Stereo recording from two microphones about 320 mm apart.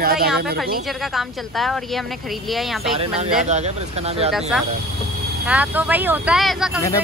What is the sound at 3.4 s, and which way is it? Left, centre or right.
Speech, right.